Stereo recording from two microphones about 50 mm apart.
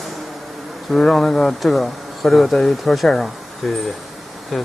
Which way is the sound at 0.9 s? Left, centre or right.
Centre.